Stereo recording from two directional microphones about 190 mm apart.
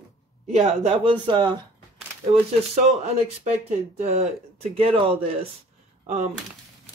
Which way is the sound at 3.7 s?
35° right (ahead or behind).